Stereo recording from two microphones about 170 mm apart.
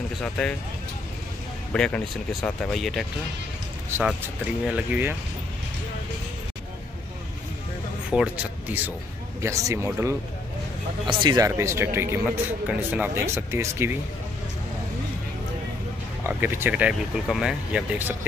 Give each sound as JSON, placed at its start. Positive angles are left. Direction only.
{"t": 0.2, "sound": "speech", "side_deg": 5}
{"t": 1.7, "sound": "speech", "side_deg": 5}
{"t": 4.6, "sound": "speech", "side_deg": -10}
{"t": 8.1, "sound": "speech", "side_deg": -5}
{"t": 9.4, "sound": "speech", "side_deg": -20}
{"t": 11.1, "sound": "speech", "side_deg": -25}
{"t": 16.3, "sound": "speech", "side_deg": -15}